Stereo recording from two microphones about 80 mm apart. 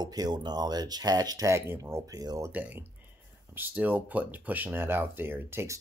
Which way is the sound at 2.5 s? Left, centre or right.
Right.